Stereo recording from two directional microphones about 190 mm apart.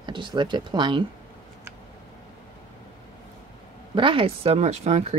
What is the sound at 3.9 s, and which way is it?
Speech, 25° right (ahead or behind).